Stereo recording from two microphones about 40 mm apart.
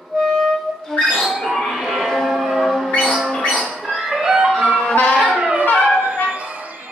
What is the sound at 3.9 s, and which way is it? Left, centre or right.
Music, centre.